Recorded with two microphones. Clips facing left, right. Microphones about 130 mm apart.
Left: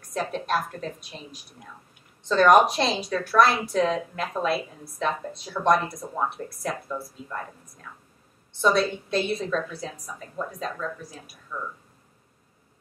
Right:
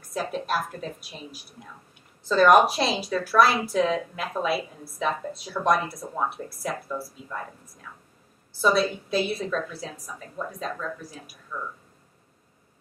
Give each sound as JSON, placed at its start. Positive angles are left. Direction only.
{"t": 0.1, "sound": "speech", "side_deg": -5}